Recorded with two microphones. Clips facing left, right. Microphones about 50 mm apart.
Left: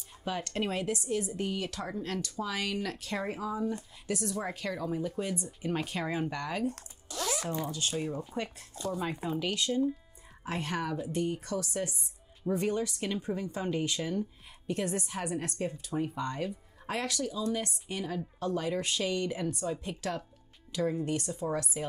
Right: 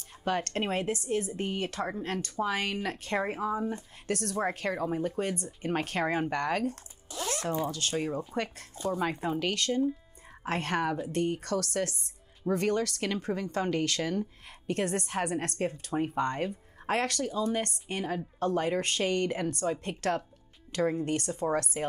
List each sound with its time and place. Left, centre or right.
0.2 s speech: right
0.7 s speech: right
2.0 s speech: right
2.2 s speech: right
4.1 s speech: right
4.4 s speech: right
7.9 s speech: right
9.2 s speech: right